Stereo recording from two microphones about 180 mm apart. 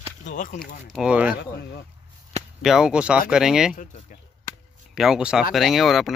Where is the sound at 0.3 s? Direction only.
45° left (ahead or behind).